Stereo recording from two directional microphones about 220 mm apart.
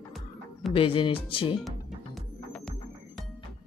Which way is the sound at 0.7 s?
25° left (ahead or behind).